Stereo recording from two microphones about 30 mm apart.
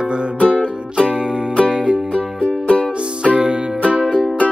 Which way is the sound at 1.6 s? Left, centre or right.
Right.